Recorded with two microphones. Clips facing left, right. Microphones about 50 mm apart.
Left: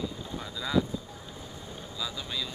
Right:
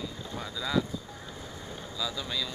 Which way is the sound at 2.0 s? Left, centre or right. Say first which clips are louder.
Right 2 dB; centre.